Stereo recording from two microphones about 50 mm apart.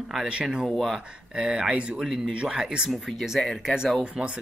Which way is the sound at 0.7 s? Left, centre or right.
Centre.